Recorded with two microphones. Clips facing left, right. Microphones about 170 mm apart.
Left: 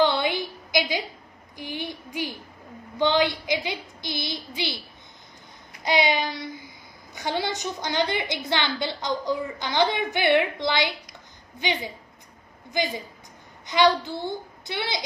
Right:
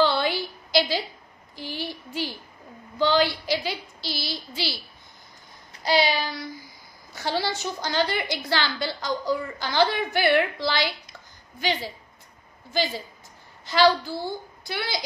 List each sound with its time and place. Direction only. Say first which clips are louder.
0.0 s a sound: even; 20° left (ahead or behind)
3.0 s a woman's voice: even; 20° left (ahead or behind)
5.8 s child singing: even; 20° left (ahead or behind)
7.2 s a woman's voice: even; 20° left (ahead or behind)
12.7 s a sound: even; 20° left (ahead or behind)
13.7 s a woman's voice: right 1 dB; 20° left (ahead or behind)